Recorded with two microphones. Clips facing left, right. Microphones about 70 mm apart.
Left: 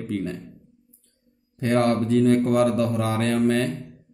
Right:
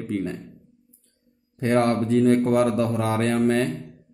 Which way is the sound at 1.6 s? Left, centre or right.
Right.